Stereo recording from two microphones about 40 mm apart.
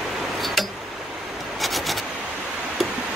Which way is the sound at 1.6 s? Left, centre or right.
Centre.